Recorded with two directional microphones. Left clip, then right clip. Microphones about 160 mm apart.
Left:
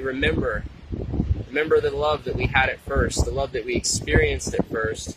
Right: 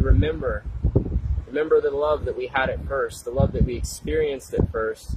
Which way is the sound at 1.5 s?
10° left (ahead or behind).